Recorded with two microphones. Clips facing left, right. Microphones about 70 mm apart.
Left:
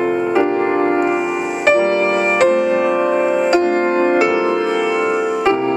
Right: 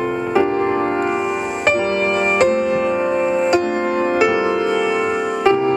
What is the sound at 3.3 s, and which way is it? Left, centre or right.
Music, centre.